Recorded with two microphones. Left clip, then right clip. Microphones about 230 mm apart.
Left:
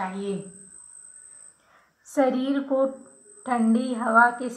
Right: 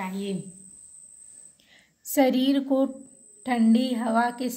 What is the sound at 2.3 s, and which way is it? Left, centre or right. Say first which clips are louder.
Speech: right 1 dB; right.